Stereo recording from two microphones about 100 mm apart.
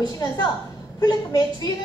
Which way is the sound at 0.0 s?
40° left (ahead or behind).